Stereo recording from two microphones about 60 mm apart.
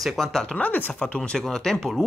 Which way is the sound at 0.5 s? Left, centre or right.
Left.